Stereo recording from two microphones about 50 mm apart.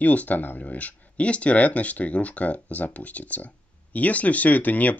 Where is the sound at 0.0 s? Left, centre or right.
Left.